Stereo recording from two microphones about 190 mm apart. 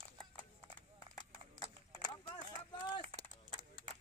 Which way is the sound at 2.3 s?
25° left (ahead or behind).